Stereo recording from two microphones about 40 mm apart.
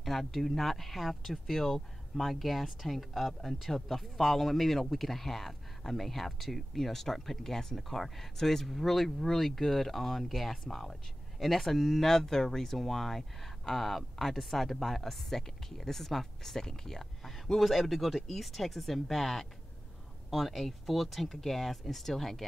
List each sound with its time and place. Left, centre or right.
0.0 s speech: centre